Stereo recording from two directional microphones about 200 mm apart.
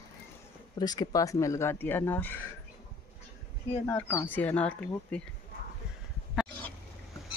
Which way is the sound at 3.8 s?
10° left (ahead or behind).